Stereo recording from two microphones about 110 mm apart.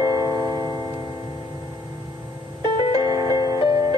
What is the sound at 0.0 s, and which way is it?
Music, 35° right (ahead or behind).